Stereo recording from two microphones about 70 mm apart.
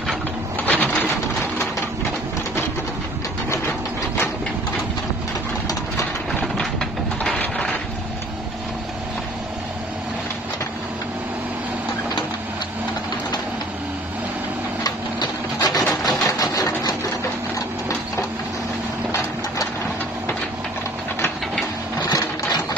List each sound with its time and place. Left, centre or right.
0.7 s printer: left
6.5 s a sound: centre
7.3 s crushing: centre
14.8 s printer: left
15.9 s a sound: centre
16.3 s sewing machine: left
22.1 s sewing machine: left